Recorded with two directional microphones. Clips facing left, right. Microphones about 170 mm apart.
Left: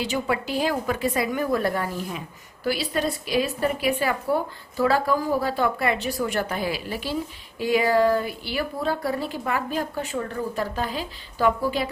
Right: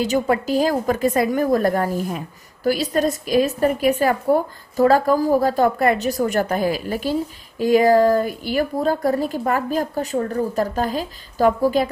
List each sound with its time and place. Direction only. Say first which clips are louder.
0.0 s a woman's voice: right 6 dB; 40° right (ahead or behind)